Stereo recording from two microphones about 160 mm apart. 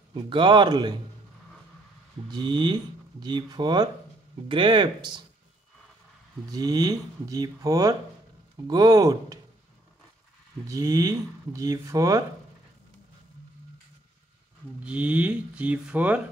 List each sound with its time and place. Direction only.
0.1 s a man's voice: 30° right (ahead or behind)
2.2 s a man's voice: 30° right (ahead or behind)
6.5 s speech: 25° right (ahead or behind)
10.7 s speech: 20° right (ahead or behind)
14.8 s speech: 5° right (ahead or behind)